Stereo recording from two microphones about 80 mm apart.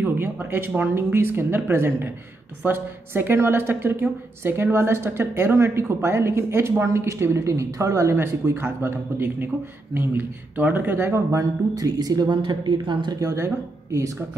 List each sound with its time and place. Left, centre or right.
0.0 s a woman's voice: right
11.7 s speech: right
13.2 s a woman's voice: right